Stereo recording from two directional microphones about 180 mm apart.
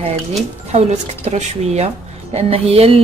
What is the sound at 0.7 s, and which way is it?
Speech, 35° right (ahead or behind).